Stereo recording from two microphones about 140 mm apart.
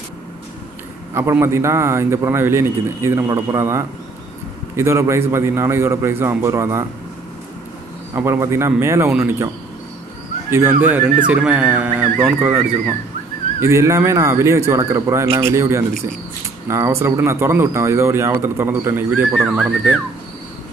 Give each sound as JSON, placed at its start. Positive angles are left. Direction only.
{"t": 1.1, "sound": "a man's voice", "side_deg": -20}
{"t": 8.1, "sound": "a man's voice", "side_deg": -20}
{"t": 10.8, "sound": "a man's voice", "side_deg": -15}